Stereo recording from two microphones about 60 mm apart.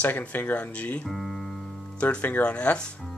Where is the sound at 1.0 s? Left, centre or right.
Centre.